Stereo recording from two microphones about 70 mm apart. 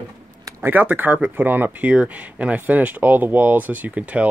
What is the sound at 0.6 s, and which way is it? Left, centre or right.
Speech, right.